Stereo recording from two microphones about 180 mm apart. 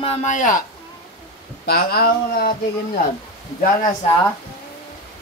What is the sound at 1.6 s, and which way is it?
Speech, 55° left (ahead or behind).